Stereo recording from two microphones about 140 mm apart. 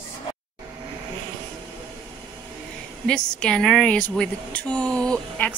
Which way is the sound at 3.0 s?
5° left (ahead or behind).